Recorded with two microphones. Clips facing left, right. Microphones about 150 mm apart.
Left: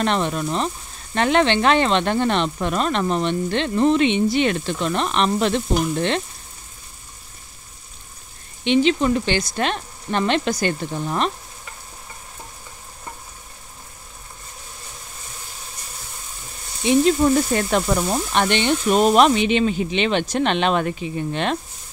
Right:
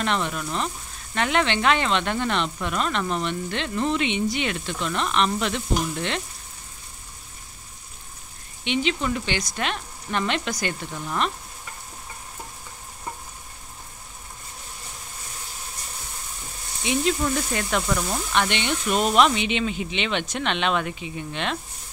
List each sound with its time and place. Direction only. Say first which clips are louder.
0.0 s speech: left 5 dB; 35° left (ahead or behind)
8.6 s speech: left 8 dB; 35° left (ahead or behind)
16.8 s speech: left 8 dB; 35° left (ahead or behind)